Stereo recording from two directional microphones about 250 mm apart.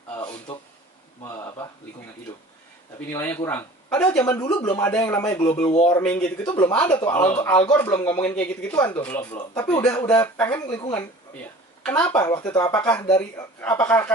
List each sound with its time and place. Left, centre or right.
1.2 s speech: centre
3.1 s speech: centre
5.7 s speech: left
5.9 s speech: centre
13.0 s speech: centre
13.6 s speech: centre